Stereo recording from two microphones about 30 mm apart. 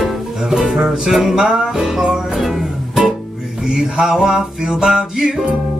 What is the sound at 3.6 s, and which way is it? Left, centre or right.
Music, right.